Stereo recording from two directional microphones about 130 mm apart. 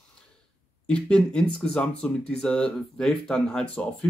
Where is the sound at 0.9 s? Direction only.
5° left (ahead or behind).